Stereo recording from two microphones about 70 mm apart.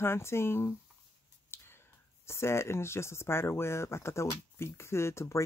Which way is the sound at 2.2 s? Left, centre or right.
Left.